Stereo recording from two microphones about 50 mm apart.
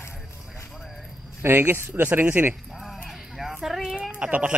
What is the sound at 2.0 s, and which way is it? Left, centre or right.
Speech, right.